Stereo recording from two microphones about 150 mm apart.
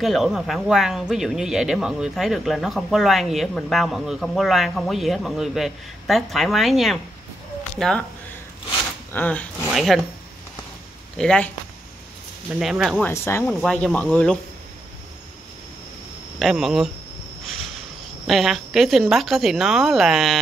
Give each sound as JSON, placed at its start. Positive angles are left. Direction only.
{"t": 0.0, "sound": "speech", "side_deg": 0}
{"t": 9.1, "sound": "speech", "side_deg": 10}
{"t": 11.1, "sound": "speech", "side_deg": 5}
{"t": 12.5, "sound": "speech", "side_deg": -5}
{"t": 13.0, "sound": "speech", "side_deg": 15}
{"t": 13.5, "sound": "speech", "side_deg": 5}
{"t": 16.3, "sound": "speech", "side_deg": 0}